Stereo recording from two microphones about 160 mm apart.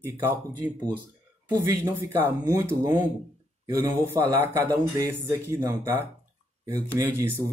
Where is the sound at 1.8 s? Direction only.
15° right (ahead or behind).